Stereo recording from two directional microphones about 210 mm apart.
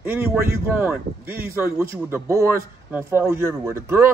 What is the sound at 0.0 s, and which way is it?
Speech, 10° right (ahead or behind).